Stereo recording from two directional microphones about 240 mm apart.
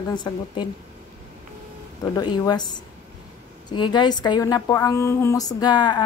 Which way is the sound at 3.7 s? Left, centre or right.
Centre.